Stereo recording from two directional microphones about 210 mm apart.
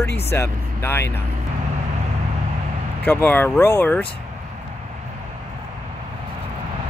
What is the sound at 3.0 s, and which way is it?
Speech, 10° left (ahead or behind).